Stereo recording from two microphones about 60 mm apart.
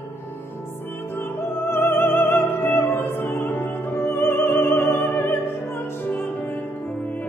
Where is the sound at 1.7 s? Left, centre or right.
Left.